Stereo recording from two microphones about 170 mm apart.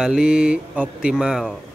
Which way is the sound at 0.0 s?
5° right (ahead or behind).